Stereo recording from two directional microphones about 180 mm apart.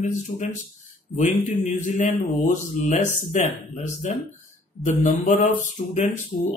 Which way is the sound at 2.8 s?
40° left (ahead or behind).